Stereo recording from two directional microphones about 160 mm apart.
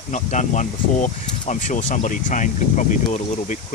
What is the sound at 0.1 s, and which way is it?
Speech, 50° left (ahead or behind).